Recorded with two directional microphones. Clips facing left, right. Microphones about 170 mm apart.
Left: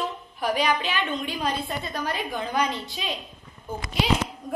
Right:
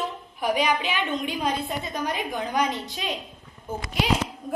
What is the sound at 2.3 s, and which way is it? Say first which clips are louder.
Speech: even; 15° right (ahead or behind).